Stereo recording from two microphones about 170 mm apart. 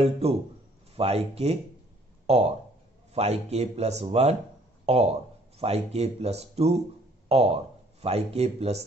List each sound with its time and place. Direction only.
0.0 s speech: 35° right (ahead or behind)
3.2 s speech: 40° right (ahead or behind)